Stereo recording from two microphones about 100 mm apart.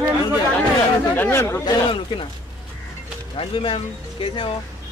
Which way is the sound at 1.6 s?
50° left (ahead or behind).